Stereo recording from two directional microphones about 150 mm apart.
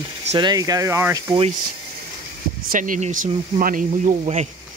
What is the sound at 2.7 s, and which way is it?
Speech, 60° right (ahead or behind).